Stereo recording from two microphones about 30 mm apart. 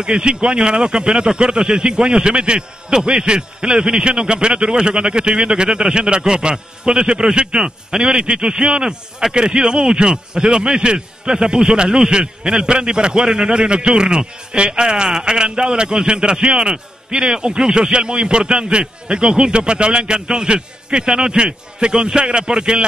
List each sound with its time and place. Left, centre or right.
0.0 s speech: right